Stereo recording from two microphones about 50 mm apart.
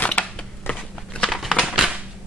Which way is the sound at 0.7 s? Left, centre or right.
Left.